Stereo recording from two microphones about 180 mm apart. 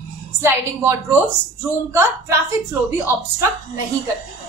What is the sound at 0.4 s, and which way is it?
A woman's voice, 15° right (ahead or behind).